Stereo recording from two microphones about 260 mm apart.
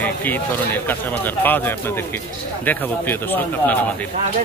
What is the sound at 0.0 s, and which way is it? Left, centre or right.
Speech, centre.